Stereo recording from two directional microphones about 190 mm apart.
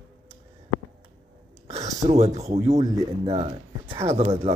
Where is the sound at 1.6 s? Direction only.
35° right (ahead or behind).